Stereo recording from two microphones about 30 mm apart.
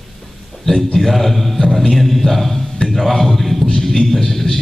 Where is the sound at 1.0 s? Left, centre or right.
Centre.